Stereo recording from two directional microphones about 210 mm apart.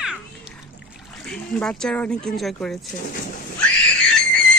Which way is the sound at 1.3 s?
5° left (ahead or behind).